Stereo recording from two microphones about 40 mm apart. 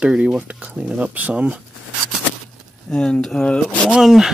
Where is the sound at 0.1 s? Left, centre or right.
Right.